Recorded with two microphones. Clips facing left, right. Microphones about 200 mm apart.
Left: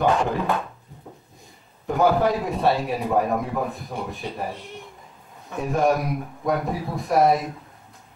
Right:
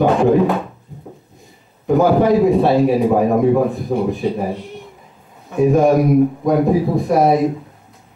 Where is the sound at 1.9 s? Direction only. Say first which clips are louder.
Right 7 dB; centre (ahead or behind).